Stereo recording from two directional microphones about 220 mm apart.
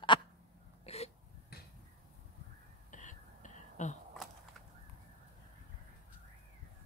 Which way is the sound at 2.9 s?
35° left (ahead or behind).